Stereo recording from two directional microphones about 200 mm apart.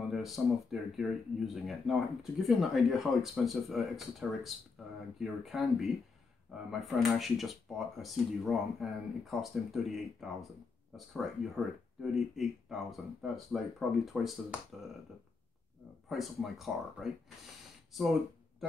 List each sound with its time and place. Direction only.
0.1 s speech: centre (ahead or behind)
16.1 s speech: centre (ahead or behind)